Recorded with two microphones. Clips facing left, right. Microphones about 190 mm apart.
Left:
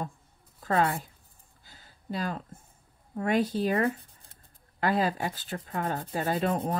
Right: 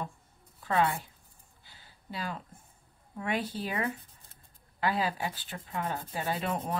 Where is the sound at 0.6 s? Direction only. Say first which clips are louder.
Left 2 dB; 40° left (ahead or behind).